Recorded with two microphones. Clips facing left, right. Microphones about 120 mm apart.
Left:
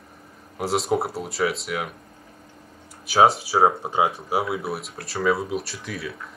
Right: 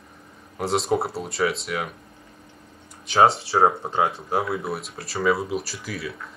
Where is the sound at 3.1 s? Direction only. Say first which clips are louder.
Even; 5° left (ahead or behind).